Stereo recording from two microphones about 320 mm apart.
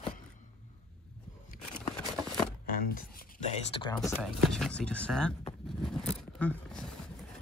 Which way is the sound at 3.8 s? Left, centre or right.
Centre.